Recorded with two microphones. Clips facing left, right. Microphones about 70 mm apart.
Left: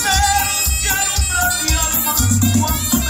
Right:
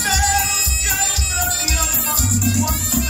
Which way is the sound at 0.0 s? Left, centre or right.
Left.